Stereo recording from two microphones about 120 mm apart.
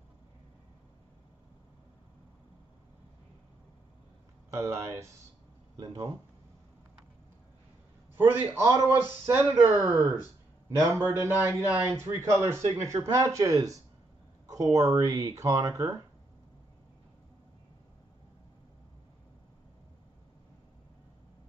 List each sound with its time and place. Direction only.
4.5 s a man's voice: 25° right (ahead or behind)
8.2 s a man's voice: 20° right (ahead or behind)
10.8 s a man's voice: 25° right (ahead or behind)